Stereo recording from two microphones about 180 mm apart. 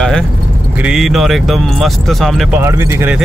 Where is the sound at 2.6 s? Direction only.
15° right (ahead or behind).